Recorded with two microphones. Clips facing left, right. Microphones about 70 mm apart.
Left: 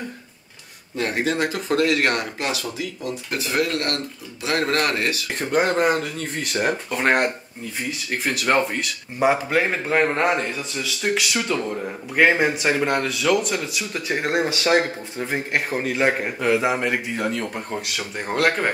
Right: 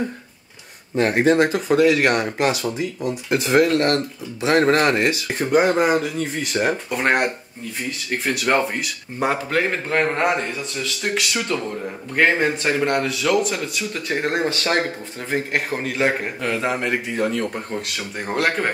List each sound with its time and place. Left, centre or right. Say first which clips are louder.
0.9 s speech: right 7 dB; right
1.7 s speech: right 3 dB; centre
2.0 s speech: right 4 dB; centre
5.4 s a man's voice: right 3 dB; centre
9.3 s a man's voice: right 1 dB; centre